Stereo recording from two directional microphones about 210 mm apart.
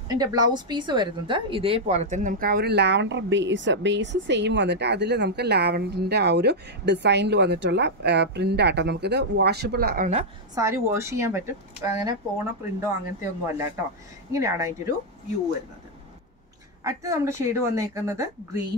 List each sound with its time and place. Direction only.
0.1 s speech: 20° right (ahead or behind); by 10.2 s 35° right (ahead or behind)
10.5 s speech: 15° right (ahead or behind)
16.8 s speech: 15° right (ahead or behind)